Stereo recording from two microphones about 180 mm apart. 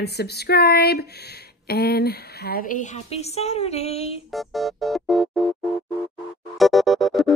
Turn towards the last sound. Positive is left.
turn(degrees=0)  # may be behind; listen again after turning